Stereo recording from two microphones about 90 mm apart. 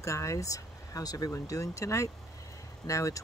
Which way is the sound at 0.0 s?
35° left (ahead or behind).